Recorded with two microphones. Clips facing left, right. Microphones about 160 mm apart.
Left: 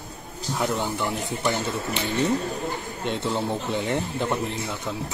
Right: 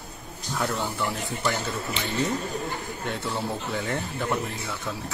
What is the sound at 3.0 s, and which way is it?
Speech, 20° left (ahead or behind).